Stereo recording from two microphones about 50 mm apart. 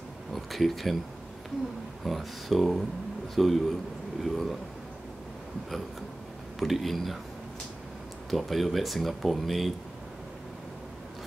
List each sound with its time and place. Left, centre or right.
0.3 s speech: centre
2.0 s speech: centre
6.6 s speech: centre
8.3 s speech: centre